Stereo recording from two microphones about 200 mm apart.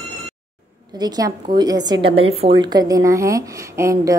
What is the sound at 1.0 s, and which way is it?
A woman's voice, 20° right (ahead or behind).